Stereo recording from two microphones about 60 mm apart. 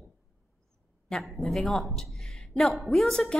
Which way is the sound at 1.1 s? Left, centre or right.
Centre.